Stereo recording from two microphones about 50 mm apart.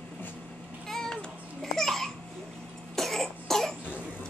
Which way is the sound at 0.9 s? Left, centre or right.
Centre.